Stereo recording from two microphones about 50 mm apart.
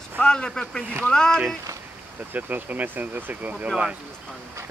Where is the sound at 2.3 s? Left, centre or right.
Right.